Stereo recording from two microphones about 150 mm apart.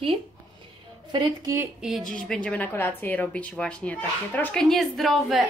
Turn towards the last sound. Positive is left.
turn(degrees=0)  # may be behind; listen again after turning